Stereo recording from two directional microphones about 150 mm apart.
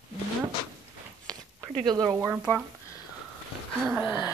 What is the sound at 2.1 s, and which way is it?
Speech, 10° right (ahead or behind).